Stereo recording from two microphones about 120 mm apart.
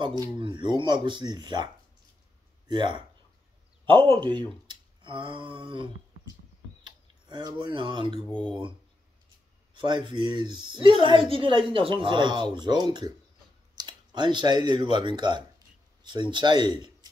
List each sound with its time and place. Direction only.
0.0 s a woman's voice: 40° right (ahead or behind)
2.7 s a woman's voice: 40° right (ahead or behind)
4.6 s finger snapping: 40° right (ahead or behind)
6.8 s tick-tock: 40° right (ahead or behind)
8.3 s speech: 5° left (ahead or behind)
9.8 s a woman's voice: 40° right (ahead or behind)